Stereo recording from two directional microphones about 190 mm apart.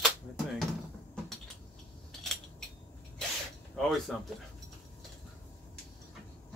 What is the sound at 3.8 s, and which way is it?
Speech, centre (ahead or behind).